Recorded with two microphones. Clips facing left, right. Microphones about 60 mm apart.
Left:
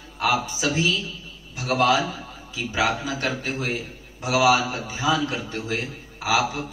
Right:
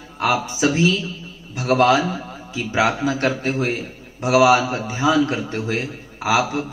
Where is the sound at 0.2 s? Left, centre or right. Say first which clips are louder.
Right 4 dB; right.